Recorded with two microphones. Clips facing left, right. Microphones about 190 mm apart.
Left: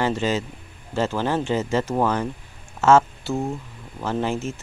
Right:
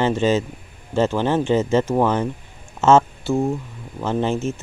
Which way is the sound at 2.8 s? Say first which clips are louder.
Right 2 dB; 20° right (ahead or behind).